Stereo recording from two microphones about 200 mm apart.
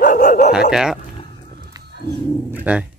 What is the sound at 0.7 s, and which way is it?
Speech, 5° right (ahead or behind).